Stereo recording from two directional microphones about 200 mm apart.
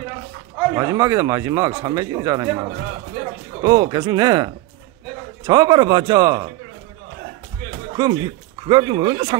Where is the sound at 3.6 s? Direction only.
20° right (ahead or behind).